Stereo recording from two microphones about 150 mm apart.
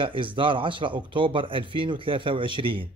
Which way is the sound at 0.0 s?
35° right (ahead or behind).